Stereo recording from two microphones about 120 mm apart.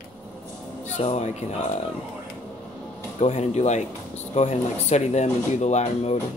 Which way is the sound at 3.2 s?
70° left (ahead or behind).